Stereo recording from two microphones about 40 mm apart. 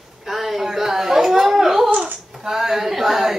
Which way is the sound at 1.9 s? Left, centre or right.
Right.